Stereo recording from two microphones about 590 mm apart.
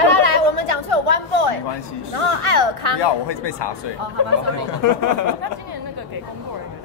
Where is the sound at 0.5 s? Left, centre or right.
Right.